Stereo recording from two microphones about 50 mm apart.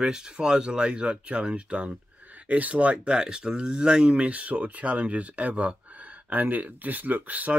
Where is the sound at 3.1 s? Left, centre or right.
Centre; by 7.6 s right.